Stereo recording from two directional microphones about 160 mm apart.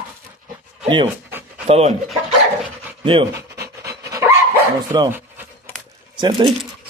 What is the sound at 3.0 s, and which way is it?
Speech, 35° right (ahead or behind).